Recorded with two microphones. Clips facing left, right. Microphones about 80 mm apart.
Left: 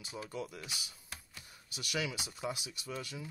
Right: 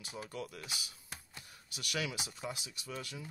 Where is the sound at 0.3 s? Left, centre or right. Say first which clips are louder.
Left 3 dB; centre.